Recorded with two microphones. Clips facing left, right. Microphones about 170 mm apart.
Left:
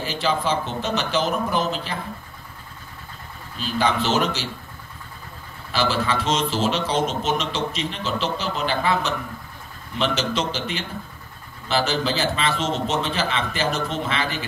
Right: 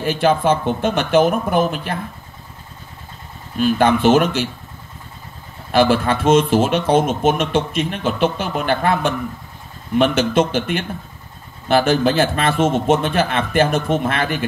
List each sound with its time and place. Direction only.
0.0 s speech: 55° right (ahead or behind)
3.5 s speech: 55° right (ahead or behind)
5.7 s speech: 55° right (ahead or behind)